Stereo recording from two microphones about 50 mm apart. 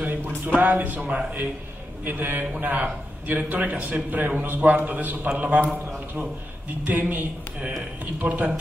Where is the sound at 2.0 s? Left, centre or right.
Right.